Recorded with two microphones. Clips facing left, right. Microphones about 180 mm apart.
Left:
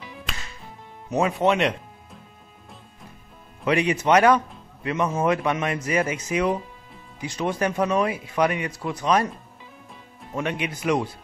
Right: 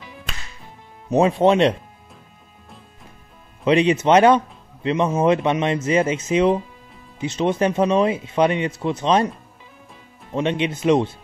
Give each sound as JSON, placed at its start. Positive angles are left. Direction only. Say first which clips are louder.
{"t": 1.1, "sound": "speech", "louder": "right 5 dB", "side_deg": -30}
{"t": 3.6, "sound": "speech", "louder": "right 5 dB", "side_deg": -25}
{"t": 10.3, "sound": "speech", "louder": "right 6 dB", "side_deg": -25}